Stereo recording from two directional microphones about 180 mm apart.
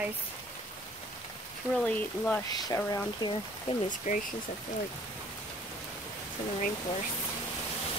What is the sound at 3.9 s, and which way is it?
Speech, 45° left (ahead or behind).